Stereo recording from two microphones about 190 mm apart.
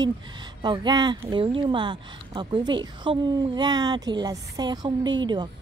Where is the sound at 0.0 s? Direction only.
25° right (ahead or behind).